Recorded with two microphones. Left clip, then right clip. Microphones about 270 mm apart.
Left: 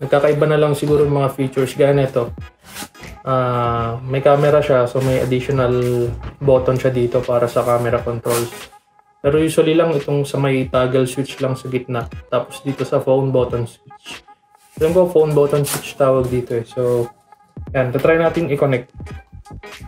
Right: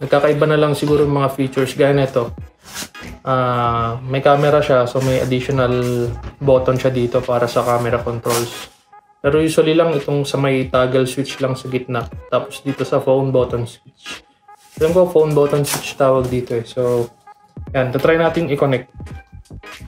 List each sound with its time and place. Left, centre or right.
0.0 s speech: centre